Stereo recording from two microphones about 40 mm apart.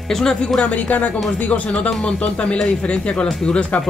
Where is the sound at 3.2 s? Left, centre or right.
Centre.